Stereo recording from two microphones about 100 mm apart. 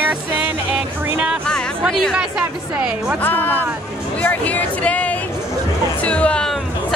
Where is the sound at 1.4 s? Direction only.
10° left (ahead or behind).